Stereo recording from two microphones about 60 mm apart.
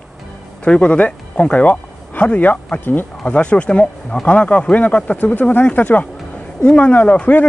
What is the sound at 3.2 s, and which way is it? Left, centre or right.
Speech, centre.